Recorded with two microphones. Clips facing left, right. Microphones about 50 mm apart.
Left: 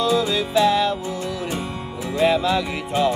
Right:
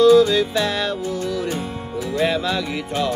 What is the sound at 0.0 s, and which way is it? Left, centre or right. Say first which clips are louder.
Music: right 7 dB; centre.